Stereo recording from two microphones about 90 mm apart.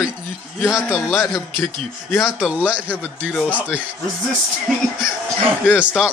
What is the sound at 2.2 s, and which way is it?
Speech, 10° right (ahead or behind).